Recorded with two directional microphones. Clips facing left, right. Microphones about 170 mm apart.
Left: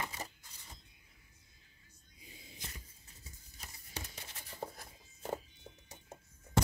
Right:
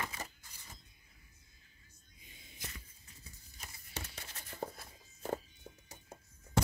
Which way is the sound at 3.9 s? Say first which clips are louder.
Right 1 dB; 15° left (ahead or behind).